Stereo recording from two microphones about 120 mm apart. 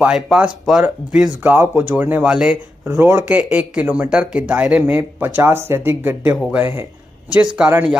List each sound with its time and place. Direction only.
0.0 s speech: 10° right (ahead or behind)
2.8 s speech: 20° right (ahead or behind)
7.3 s speech: 5° right (ahead or behind)